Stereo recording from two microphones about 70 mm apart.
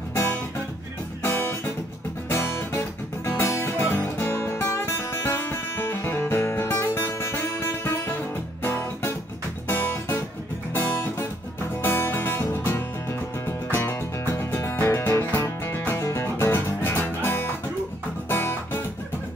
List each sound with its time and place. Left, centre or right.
2.2 s music: left